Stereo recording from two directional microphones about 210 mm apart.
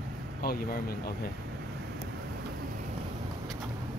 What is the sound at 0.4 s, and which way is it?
Speech, 45° left (ahead or behind).